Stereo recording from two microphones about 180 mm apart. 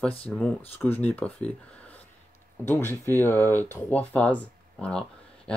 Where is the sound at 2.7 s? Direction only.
15° left (ahead or behind).